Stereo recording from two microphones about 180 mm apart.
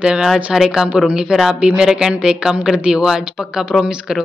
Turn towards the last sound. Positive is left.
turn(degrees=-5)  # may be behind; listen again after turning